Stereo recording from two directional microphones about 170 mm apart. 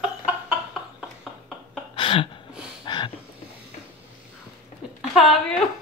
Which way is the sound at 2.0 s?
30° left (ahead or behind).